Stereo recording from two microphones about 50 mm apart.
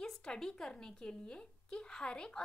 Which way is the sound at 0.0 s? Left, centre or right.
Centre.